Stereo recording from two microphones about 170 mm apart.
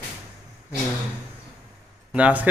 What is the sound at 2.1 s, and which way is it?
Speech, 10° right (ahead or behind).